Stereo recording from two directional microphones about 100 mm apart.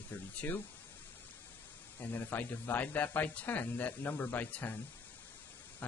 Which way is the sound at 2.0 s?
20° left (ahead or behind).